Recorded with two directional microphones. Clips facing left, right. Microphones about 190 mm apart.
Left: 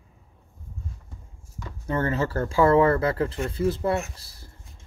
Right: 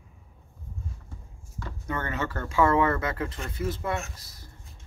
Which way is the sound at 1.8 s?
30° left (ahead or behind).